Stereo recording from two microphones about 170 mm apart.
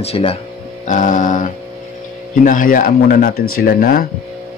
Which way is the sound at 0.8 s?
50° left (ahead or behind).